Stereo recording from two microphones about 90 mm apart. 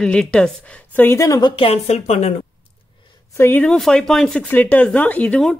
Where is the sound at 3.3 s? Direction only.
30° left (ahead or behind).